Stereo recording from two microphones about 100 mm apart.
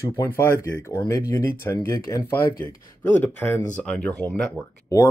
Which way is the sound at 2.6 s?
20° left (ahead or behind).